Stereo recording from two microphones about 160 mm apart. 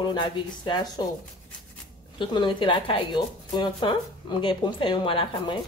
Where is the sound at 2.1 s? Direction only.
30° left (ahead or behind).